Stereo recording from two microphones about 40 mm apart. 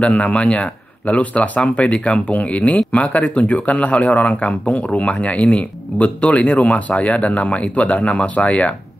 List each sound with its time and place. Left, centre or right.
0.0 s speech: left